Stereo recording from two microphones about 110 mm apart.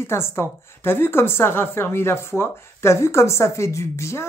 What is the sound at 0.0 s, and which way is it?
A woman's voice, 25° left (ahead or behind).